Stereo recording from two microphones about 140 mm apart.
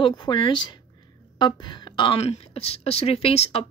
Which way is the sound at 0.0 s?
35° left (ahead or behind).